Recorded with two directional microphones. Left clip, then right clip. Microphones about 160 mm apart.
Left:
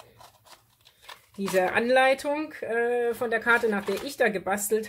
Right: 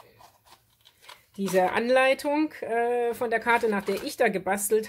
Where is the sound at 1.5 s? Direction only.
40° right (ahead or behind).